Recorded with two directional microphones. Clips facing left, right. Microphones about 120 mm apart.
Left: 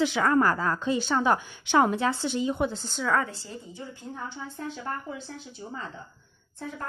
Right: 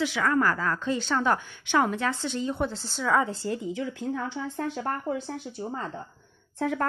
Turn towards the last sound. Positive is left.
turn(degrees=-85)